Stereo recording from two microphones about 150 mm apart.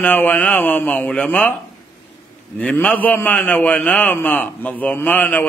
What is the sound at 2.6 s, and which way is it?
A man's voice, 10° left (ahead or behind).